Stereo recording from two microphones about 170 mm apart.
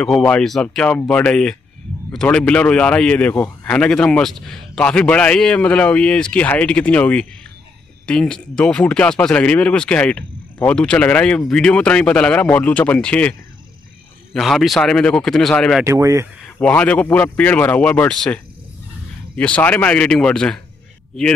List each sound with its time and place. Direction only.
0.0 s speech: 5° left (ahead or behind)
15.8 s speech: 20° right (ahead or behind)
16.4 s speech: 10° left (ahead or behind)